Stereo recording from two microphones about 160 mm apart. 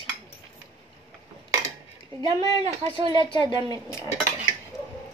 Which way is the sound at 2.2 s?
30° right (ahead or behind).